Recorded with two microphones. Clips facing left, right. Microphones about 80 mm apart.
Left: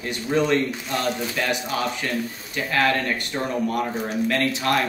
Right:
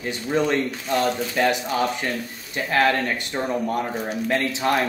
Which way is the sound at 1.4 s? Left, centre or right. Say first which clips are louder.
Right 6 dB; right.